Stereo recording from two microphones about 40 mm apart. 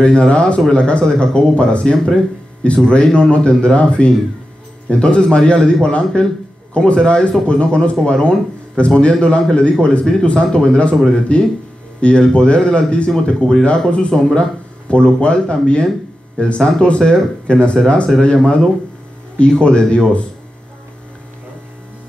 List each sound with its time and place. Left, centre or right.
0.0 s a man's voice: left